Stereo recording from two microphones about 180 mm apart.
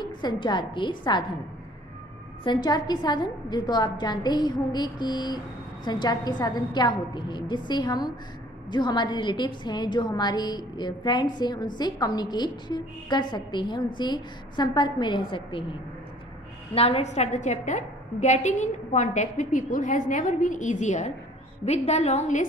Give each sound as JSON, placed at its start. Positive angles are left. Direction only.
{"t": 0.0, "sound": "a woman's voice", "side_deg": 25}
{"t": 2.4, "sound": "a woman's voice", "side_deg": 25}
{"t": 16.7, "sound": "a woman's voice", "side_deg": 35}